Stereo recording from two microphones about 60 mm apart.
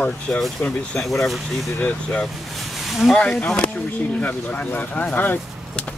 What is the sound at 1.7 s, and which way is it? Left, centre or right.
Speech, left.